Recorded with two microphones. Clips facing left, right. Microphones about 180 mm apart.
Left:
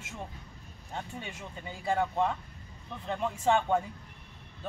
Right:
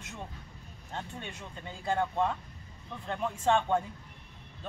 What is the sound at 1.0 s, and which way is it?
Speech, 5° left (ahead or behind).